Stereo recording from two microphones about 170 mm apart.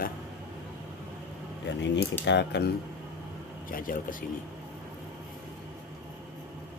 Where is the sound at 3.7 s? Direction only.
55° left (ahead or behind).